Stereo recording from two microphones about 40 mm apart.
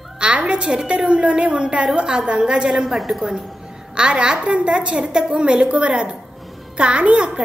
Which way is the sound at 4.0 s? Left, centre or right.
Right.